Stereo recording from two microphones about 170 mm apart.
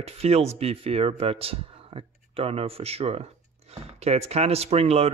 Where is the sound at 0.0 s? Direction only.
40° right (ahead or behind).